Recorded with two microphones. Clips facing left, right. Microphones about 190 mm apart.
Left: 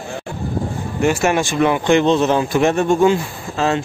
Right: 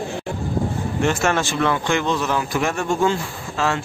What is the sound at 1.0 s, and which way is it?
A man's voice, 10° left (ahead or behind).